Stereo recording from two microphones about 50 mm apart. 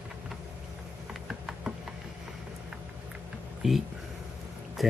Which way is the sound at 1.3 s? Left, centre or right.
Centre.